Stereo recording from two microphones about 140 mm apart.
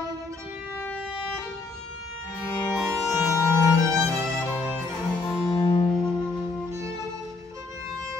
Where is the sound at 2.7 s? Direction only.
Centre (ahead or behind).